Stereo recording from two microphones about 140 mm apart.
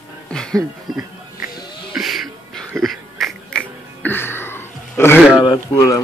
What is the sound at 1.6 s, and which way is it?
Wheeze, 35° left (ahead or behind).